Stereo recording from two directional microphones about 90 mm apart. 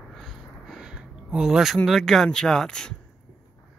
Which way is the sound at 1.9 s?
Centre (ahead or behind).